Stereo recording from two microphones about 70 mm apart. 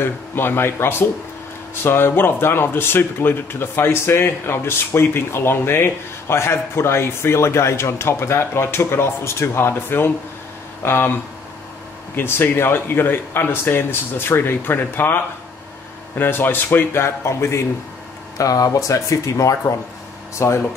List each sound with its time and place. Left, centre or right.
0.0 s speech: left
12.2 s speech: left
16.2 s speech: left
18.4 s speech: left